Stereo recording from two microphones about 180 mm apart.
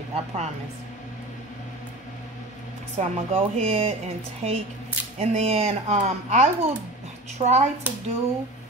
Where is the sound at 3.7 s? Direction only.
35° right (ahead or behind).